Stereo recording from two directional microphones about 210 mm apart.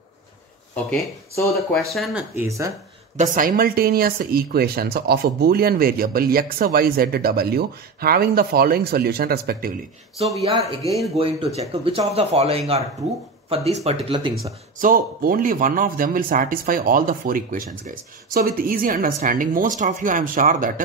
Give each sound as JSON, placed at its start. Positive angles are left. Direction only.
{"t": 1.3, "sound": "speech", "side_deg": 15}
{"t": 1.9, "sound": "speech", "side_deg": 0}
{"t": 2.3, "sound": "speech", "side_deg": -15}
{"t": 3.2, "sound": "speech", "side_deg": -40}
{"t": 10.3, "sound": "speech", "side_deg": 15}
{"t": 11.6, "sound": "speech", "side_deg": -25}
{"t": 14.8, "sound": "speech", "side_deg": -40}